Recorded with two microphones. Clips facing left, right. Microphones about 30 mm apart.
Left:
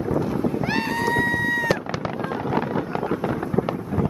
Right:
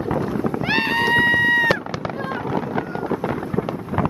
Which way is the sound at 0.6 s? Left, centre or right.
Right.